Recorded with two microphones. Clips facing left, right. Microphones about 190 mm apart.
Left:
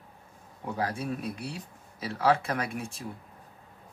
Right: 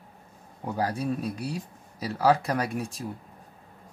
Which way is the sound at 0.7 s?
40° right (ahead or behind).